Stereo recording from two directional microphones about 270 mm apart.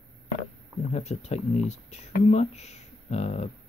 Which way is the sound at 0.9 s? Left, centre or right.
Left.